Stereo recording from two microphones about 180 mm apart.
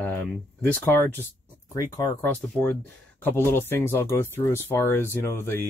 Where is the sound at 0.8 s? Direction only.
10° left (ahead or behind).